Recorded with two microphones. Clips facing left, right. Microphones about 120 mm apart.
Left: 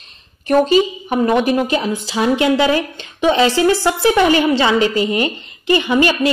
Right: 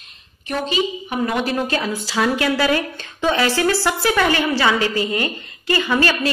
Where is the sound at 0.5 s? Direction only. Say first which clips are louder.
Left 9 dB; 40° left (ahead or behind).